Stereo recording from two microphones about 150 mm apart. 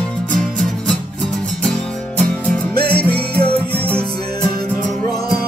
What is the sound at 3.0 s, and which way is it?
Music, 10° left (ahead or behind).